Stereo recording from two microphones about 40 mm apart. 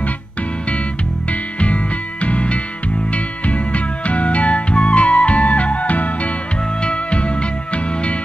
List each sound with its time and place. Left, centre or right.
1.3 s music: left
6.8 s music: left